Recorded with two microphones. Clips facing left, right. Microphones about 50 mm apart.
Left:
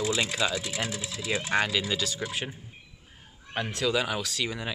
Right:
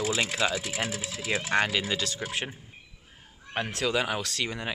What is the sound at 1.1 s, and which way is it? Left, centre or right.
Speech, right.